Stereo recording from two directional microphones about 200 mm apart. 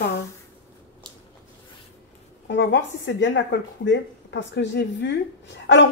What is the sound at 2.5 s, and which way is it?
Speech, 65° left (ahead or behind).